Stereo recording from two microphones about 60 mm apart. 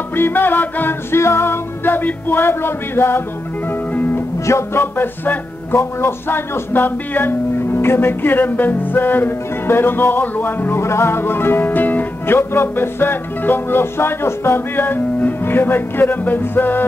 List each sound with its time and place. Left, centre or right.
0.1 s music: left
1.1 s music: left
4.5 s speech: left
4.9 s speech: left
5.8 s music: left
10.8 s music: left
12.4 s music: left
14.8 s music: left